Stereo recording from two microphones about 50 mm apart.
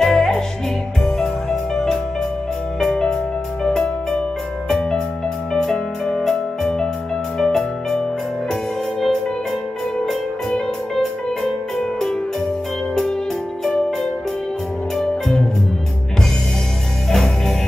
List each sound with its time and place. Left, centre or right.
0.0 s music: centre
4.6 s music: centre
10.5 s music: centre
13.7 s music: centre
17.1 s music: centre